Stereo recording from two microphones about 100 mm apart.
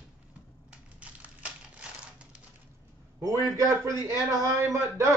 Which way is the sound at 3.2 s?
35° right (ahead or behind).